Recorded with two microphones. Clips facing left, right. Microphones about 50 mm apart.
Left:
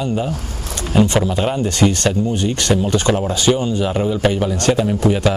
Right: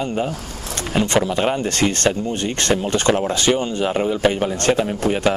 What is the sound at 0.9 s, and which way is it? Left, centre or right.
Speech, right.